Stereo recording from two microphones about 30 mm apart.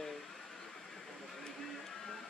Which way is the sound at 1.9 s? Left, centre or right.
Centre.